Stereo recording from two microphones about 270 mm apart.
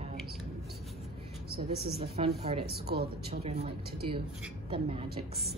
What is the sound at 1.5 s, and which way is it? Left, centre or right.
Speech, right.